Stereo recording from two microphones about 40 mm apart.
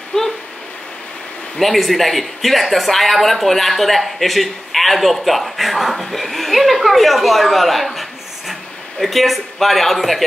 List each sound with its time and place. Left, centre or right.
0.1 s speech: left
1.6 s speech: centre